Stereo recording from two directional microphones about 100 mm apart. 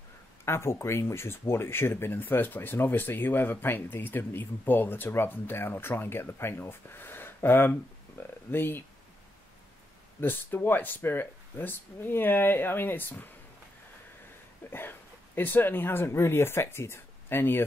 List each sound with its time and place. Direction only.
0.5 s speech: 25° left (ahead or behind)
10.2 s speech: 20° left (ahead or behind)
14.7 s speech: 20° left (ahead or behind)